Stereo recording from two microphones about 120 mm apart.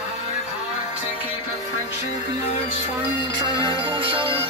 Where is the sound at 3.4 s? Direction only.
45° right (ahead or behind).